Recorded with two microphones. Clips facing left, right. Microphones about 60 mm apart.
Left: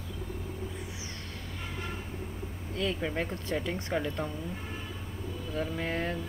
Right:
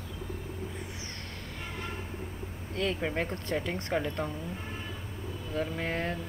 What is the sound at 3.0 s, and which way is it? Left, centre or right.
Speech, centre.